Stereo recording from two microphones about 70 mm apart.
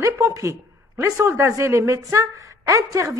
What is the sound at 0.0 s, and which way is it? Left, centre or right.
Speech, right.